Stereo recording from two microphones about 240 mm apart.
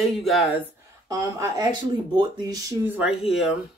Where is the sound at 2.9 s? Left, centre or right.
Centre.